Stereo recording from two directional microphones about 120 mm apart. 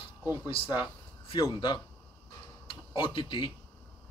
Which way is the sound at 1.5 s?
40° left (ahead or behind).